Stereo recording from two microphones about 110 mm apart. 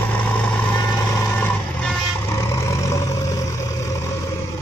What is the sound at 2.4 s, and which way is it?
Vehicle, 30° left (ahead or behind).